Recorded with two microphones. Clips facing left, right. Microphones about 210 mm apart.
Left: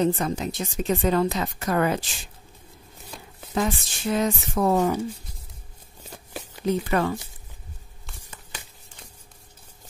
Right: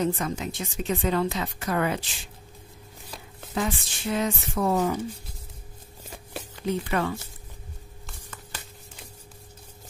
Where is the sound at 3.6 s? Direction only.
40° left (ahead or behind).